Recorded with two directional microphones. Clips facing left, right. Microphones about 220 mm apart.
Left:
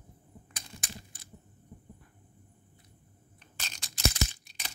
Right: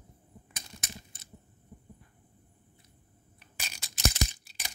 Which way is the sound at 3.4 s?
10° right (ahead or behind).